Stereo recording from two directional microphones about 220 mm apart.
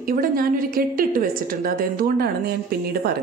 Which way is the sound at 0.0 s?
40° right (ahead or behind).